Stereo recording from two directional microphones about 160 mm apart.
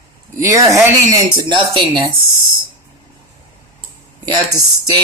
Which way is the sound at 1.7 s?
30° right (ahead or behind).